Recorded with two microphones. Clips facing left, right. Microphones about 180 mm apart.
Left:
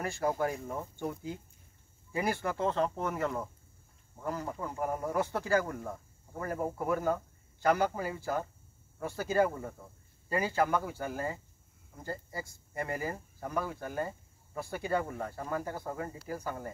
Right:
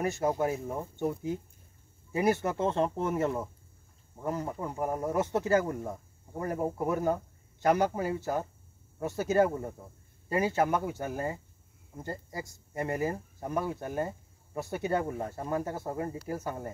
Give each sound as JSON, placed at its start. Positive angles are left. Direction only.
{"t": 0.0, "sound": "speech", "side_deg": -20}
{"t": 4.7, "sound": "speech", "side_deg": -5}
{"t": 5.1, "sound": "speech", "side_deg": -25}